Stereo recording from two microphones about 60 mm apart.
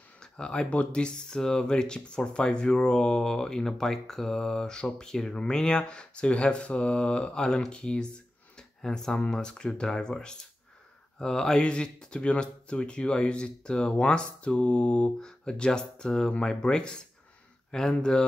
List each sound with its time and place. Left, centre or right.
0.2 s speech: centre